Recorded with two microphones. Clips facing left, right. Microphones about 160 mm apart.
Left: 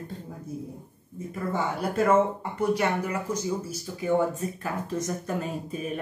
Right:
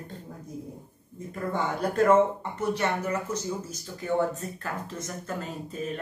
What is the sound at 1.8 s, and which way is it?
Speech, 10° left (ahead or behind).